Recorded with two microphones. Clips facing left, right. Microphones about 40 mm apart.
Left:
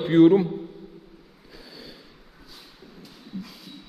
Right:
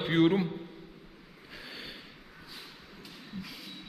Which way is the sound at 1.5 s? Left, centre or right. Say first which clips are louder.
Even; right.